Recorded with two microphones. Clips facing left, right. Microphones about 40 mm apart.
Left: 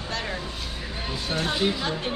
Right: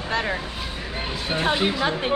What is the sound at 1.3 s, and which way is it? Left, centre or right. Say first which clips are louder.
Speech: right 4 dB; right.